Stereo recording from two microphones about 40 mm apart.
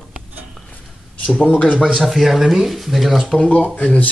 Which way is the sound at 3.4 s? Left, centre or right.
Left.